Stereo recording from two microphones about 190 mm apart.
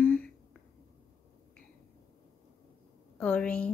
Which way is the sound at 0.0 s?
10° left (ahead or behind).